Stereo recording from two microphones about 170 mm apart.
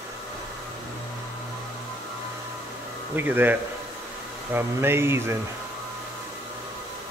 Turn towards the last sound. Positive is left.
turn(degrees=-15)  # may be behind; listen again after turning